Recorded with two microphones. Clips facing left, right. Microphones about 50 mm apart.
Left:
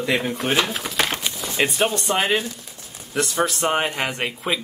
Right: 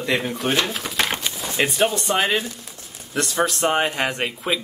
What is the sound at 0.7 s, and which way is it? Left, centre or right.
Speech, centre.